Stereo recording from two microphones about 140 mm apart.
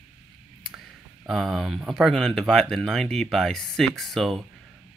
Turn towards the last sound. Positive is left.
turn(degrees=0)  # may be behind; listen again after turning